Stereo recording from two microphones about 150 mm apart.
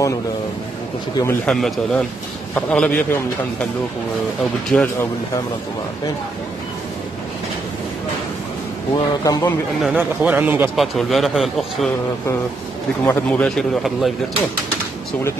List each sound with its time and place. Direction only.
1.5 s a man's voice: 5° left (ahead or behind)
4.7 s a man's voice: 10° left (ahead or behind)
8.9 s a man's voice: 25° left (ahead or behind)
9.8 s a man's voice: 5° right (ahead or behind)
10.8 s a man's voice: centre (ahead or behind)
13.0 s a man's voice: 15° left (ahead or behind)
13.6 s a man's voice: centre (ahead or behind)